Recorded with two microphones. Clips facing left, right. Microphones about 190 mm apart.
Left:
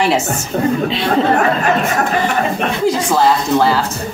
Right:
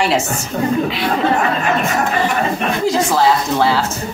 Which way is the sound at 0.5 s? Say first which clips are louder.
Left 3 dB; 55° left (ahead or behind).